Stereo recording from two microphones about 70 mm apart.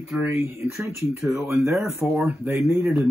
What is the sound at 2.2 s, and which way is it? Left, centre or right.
Speech, right.